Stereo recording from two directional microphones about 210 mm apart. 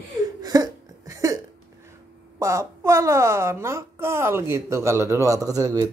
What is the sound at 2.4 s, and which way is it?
Speech, 15° right (ahead or behind).